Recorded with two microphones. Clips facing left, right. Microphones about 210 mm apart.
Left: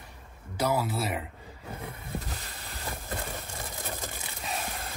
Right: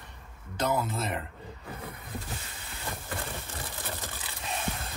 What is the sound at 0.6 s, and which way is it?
Speech, 10° left (ahead or behind).